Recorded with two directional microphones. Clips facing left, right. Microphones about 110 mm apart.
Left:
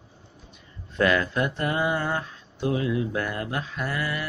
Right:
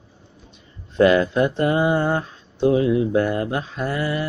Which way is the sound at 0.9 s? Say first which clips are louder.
Right 7 dB; 25° right (ahead or behind).